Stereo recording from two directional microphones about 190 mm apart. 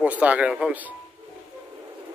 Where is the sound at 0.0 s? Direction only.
10° right (ahead or behind).